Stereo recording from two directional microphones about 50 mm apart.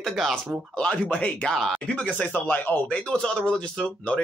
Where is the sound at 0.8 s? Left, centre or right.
Left.